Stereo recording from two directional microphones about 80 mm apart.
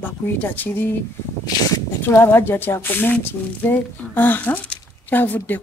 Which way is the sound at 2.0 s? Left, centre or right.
Left.